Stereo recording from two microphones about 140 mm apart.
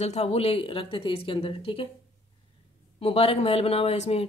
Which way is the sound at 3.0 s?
45° left (ahead or behind).